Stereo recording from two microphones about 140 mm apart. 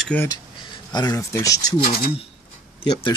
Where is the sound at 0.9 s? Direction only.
30° left (ahead or behind).